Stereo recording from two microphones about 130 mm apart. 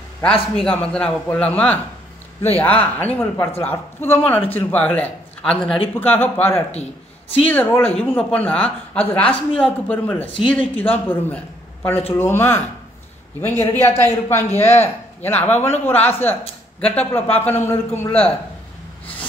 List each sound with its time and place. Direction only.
0.2 s speech: 5° left (ahead or behind)
5.9 s speech: 15° left (ahead or behind)
6.7 s a man's voice: 50° left (ahead or behind)
7.4 s a man's voice: 15° left (ahead or behind)